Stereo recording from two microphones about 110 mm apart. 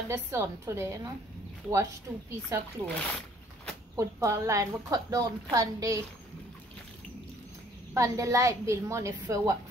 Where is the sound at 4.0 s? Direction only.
30° right (ahead or behind).